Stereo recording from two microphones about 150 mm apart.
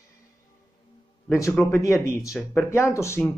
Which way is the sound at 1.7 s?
20° left (ahead or behind).